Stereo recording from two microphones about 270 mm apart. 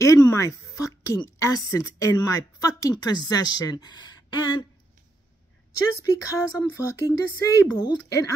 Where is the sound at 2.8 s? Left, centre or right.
Centre.